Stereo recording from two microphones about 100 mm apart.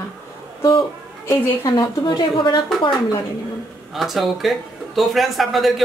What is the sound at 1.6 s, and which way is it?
Speech, 40° left (ahead or behind).